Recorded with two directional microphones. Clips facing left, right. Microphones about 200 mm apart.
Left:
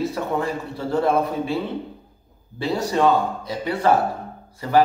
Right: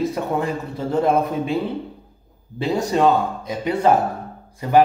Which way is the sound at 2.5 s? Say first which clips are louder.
Right 2 dB; 15° right (ahead or behind).